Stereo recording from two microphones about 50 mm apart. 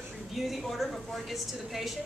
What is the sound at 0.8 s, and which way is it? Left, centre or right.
Speech, centre.